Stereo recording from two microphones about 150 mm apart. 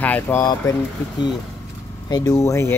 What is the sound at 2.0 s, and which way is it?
Speech, 25° left (ahead or behind).